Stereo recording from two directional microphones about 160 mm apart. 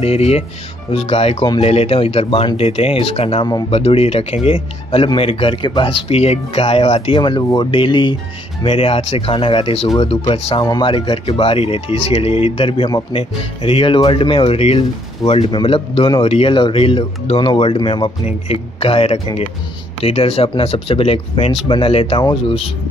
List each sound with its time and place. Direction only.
0.0 s speech: 40° left (ahead or behind)